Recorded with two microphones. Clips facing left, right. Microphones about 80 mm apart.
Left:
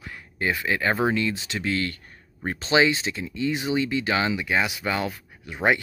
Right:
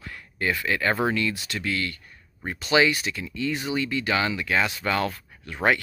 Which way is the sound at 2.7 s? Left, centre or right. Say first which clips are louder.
Even; left.